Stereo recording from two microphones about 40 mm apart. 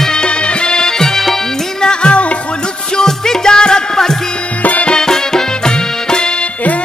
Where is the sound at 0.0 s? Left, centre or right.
Left.